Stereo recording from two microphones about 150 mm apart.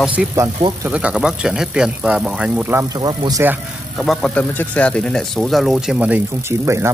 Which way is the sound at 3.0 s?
25° right (ahead or behind).